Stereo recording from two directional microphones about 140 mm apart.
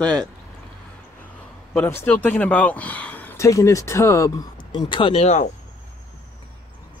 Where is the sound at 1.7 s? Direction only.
15° left (ahead or behind); by 5.4 s 50° left (ahead or behind).